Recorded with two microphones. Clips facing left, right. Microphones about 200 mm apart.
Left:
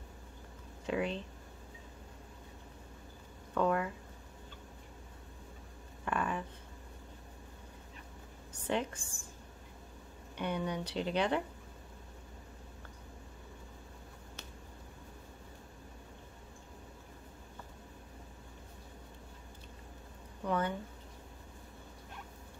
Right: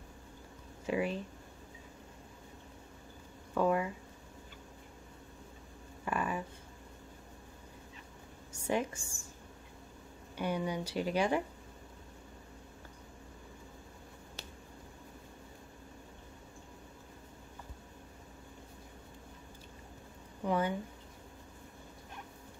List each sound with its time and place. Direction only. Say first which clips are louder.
0.8 s speech: right 1 dB; 5° right (ahead or behind)
3.5 s speech: right 1 dB; 5° right (ahead or behind)
6.0 s a sound: even; 5° right (ahead or behind)
8.6 s speech: right 1 dB; 10° right (ahead or behind)
10.3 s speech: right 1 dB; 10° right (ahead or behind)
20.4 s speech: right 2 dB; 10° right (ahead or behind)